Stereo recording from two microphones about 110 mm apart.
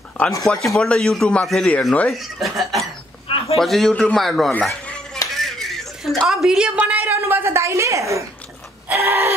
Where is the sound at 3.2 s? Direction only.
60° left (ahead or behind).